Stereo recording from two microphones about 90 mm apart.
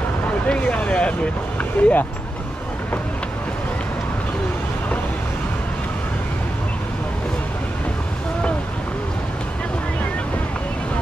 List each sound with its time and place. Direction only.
0.5 s speech: 15° left (ahead or behind)
1.6 s vehicle: 15° left (ahead or behind)